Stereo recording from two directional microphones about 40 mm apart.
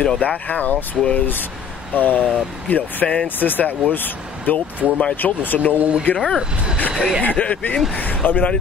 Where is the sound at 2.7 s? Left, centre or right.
Left.